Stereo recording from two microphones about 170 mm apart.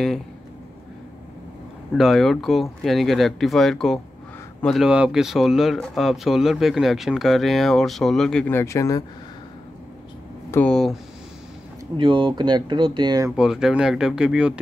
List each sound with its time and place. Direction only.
2.0 s speech: centre (ahead or behind); by 9.0 s 20° left (ahead or behind)
10.5 s speech: 5° left (ahead or behind)
12.0 s speech: 30° right (ahead or behind)
13.4 s speech: 5° right (ahead or behind)